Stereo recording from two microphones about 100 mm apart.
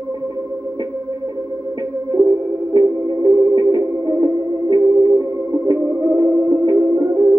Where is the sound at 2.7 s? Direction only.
40° right (ahead or behind).